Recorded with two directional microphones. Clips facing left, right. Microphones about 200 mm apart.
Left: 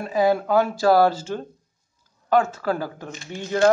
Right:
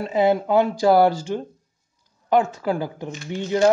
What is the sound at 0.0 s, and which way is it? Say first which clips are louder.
Speech: right 1 dB; 20° right (ahead or behind).